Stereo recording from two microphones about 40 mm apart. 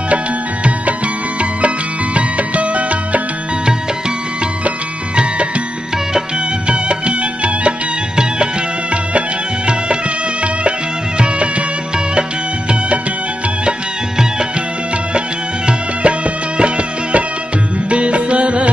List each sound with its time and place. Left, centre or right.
2.1 s music: right
5.1 s music: right
6.7 s music: right
15.1 s music: right